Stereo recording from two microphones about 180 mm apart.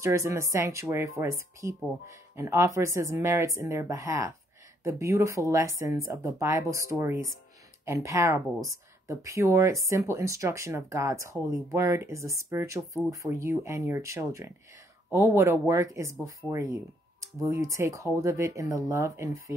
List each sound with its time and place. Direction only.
0.0 s speech: 15° right (ahead or behind)